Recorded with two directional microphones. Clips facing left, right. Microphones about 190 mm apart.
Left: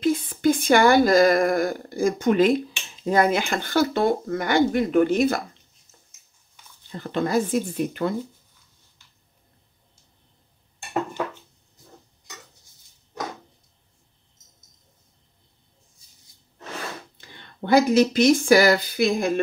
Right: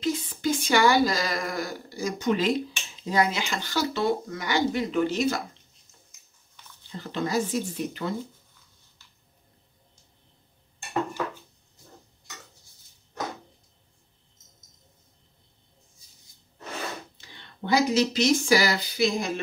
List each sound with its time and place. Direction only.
0.0 s speech: 55° left (ahead or behind)
7.0 s speech: 55° left (ahead or behind)
17.6 s speech: 55° left (ahead or behind)